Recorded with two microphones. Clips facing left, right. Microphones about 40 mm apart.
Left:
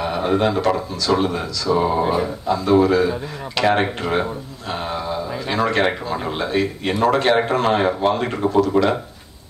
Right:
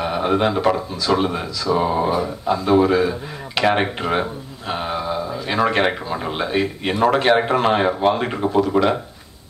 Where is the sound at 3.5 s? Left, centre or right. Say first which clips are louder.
Even; centre.